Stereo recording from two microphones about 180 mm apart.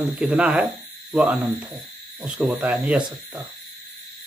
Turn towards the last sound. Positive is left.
turn(degrees=-5)  # may be behind; listen again after turning